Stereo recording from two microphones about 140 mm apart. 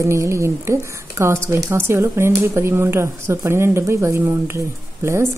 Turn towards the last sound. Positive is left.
turn(degrees=-20)  # may be behind; listen again after turning